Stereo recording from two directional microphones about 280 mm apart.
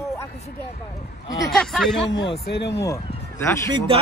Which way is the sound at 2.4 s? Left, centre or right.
Left.